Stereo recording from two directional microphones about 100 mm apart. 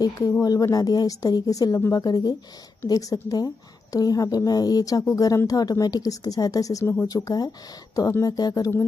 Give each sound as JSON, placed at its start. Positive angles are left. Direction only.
{"t": 0.4, "sound": "a woman's voice", "side_deg": 40}